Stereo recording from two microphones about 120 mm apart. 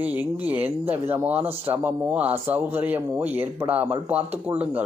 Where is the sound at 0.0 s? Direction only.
15° right (ahead or behind).